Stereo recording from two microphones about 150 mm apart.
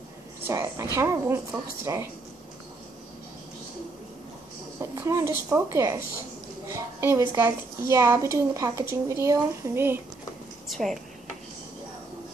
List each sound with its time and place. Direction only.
0.5 s a woman's voice: 20° right (ahead or behind)
4.7 s a woman's voice: 20° right (ahead or behind)
10.7 s speech: centre (ahead or behind)